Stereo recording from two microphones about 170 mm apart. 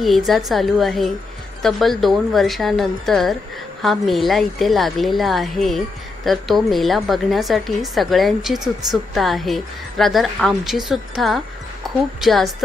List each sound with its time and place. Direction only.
0.0 s a woman's voice: centre (ahead or behind)
11.8 s music: centre (ahead or behind)
12.2 s a woman's voice: centre (ahead or behind)